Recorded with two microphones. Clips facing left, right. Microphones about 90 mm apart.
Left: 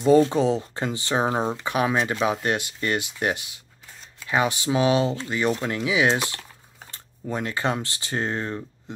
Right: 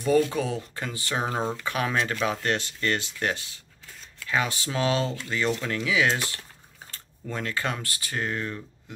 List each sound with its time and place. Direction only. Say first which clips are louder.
0.0 s speech: left 5 dB; 25° left (ahead or behind)